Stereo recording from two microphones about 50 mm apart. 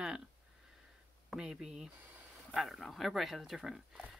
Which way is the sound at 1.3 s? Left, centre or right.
Centre.